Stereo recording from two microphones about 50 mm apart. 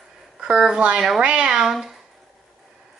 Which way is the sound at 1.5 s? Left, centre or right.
Centre.